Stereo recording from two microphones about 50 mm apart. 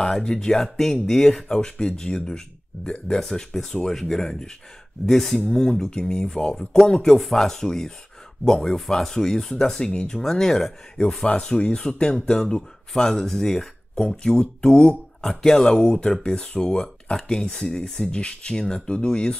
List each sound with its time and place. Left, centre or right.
0.0 s speech: centre